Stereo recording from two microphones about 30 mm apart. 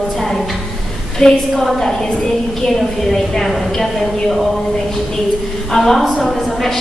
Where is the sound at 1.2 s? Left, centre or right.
Left; by 4.5 s centre.